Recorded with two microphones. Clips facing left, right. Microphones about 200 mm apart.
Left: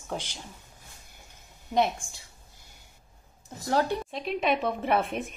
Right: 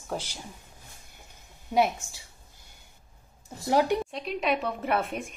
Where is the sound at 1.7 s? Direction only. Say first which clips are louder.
Right 1 dB; 5° right (ahead or behind).